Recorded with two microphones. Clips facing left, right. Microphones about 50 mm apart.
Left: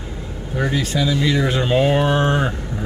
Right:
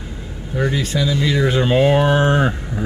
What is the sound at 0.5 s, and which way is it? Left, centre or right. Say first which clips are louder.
Speech: right 1 dB; centre.